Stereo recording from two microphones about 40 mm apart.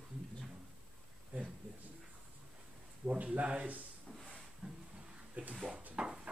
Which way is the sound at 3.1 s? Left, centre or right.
Right.